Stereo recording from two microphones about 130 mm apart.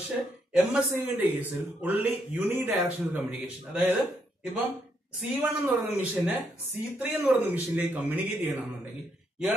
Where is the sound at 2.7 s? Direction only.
5° right (ahead or behind).